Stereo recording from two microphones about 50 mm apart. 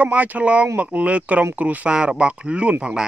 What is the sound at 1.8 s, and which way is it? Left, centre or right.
Speech, right.